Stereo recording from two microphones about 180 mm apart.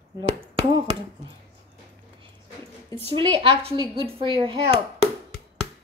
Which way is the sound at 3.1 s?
30° right (ahead or behind).